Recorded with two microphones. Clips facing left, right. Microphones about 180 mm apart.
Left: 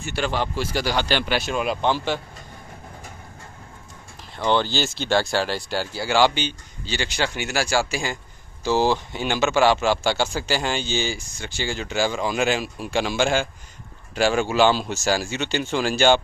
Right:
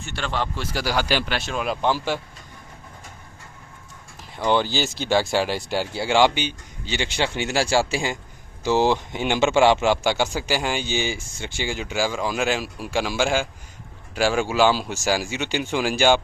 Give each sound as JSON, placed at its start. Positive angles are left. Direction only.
{"t": 0.0, "sound": "a man's voice", "side_deg": 5}
{"t": 4.4, "sound": "a man's voice", "side_deg": -10}